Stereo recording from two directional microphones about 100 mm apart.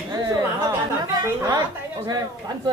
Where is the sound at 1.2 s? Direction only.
40° right (ahead or behind).